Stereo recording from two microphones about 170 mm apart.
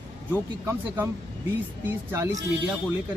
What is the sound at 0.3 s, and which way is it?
Speech, 10° right (ahead or behind).